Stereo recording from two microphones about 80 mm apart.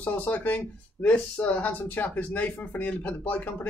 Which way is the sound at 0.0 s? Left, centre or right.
Centre.